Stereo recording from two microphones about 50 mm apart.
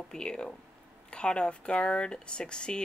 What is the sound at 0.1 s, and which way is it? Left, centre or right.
Speech, centre.